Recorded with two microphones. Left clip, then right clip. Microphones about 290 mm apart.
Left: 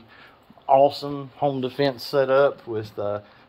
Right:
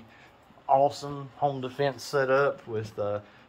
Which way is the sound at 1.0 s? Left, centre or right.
Left.